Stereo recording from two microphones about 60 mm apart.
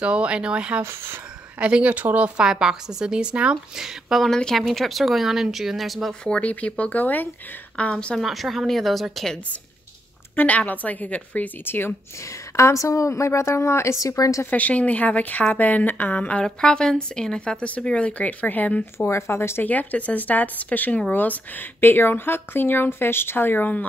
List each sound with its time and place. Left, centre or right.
0.0 s speech: centre
0.8 s speech: right
1.6 s speech: centre
2.3 s speech: centre
4.3 s speech: centre
6.2 s speech: centre
8.2 s speech: centre
10.3 s speech: left
12.5 s speech: left
14.1 s a woman's voice: left
14.5 s speech: left
19.0 s speech: left
19.6 s speech: left